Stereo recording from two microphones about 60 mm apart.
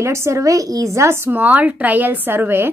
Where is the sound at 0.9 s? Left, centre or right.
Right.